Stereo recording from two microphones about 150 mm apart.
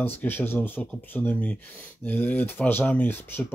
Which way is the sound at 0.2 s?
10° left (ahead or behind).